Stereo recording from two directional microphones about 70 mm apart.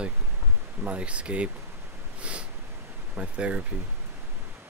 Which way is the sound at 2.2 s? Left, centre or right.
Centre.